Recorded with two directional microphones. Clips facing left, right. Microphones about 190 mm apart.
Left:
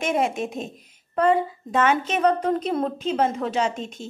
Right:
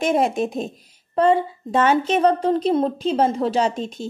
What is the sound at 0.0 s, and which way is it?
Speech, 35° right (ahead or behind).